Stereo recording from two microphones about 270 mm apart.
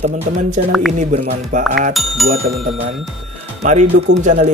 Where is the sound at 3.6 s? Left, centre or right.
Right.